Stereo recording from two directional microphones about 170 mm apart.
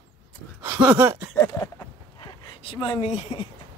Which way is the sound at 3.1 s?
40° left (ahead or behind).